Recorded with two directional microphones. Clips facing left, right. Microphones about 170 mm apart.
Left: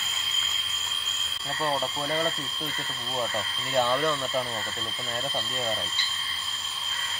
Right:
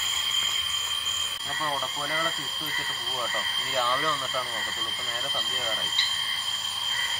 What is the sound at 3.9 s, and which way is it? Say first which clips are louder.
Speech: left 4 dB; 15° left (ahead or behind).